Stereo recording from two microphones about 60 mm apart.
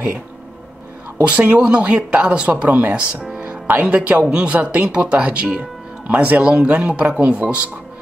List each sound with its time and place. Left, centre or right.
1.2 s speech: right
4.3 s speech: centre